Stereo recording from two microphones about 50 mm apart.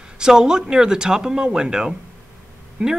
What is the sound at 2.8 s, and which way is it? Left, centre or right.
Speech, right.